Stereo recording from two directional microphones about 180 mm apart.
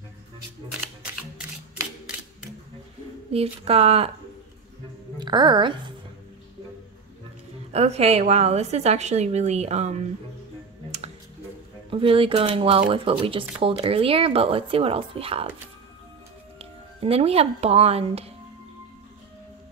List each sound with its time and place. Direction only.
3.3 s speech: 35° right (ahead or behind)
5.2 s a woman's voice: 25° right (ahead or behind)
7.7 s speech: 35° right (ahead or behind)
11.9 s speech: 30° right (ahead or behind)
16.5 s speech: 35° right (ahead or behind)